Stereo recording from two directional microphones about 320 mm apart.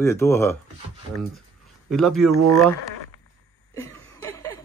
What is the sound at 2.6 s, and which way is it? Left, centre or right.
Speech, centre.